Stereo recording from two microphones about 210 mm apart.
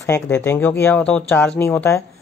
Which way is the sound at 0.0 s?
10° left (ahead or behind).